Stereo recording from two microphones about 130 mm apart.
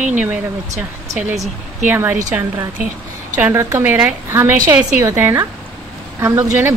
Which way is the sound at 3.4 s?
20° right (ahead or behind).